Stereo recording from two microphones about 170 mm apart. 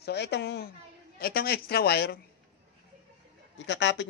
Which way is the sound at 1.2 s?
65° left (ahead or behind).